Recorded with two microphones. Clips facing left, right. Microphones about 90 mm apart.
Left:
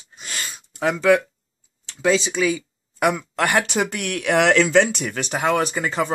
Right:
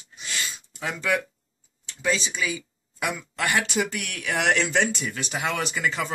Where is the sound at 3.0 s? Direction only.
55° left (ahead or behind).